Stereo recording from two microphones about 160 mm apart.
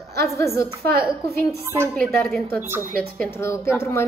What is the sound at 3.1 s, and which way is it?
Speech, 15° left (ahead or behind).